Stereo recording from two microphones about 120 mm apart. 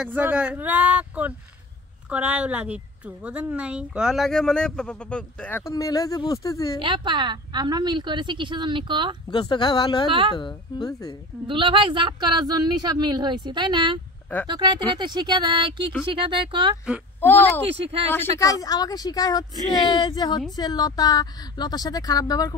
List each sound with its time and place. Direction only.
0.0 s a woman's voice: 10° right (ahead or behind); by 5.6 s 10° left (ahead or behind)
5.6 s speech: 30° left (ahead or behind)
6.8 s speech: 40° right (ahead or behind)
9.3 s speech: 40° left (ahead or behind)
11.4 s speech: 45° right (ahead or behind)
17.2 s speech: 15° left (ahead or behind)
18.4 s speech: 30° left (ahead or behind)